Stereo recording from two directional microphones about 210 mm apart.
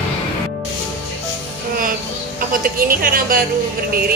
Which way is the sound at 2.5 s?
45° right (ahead or behind).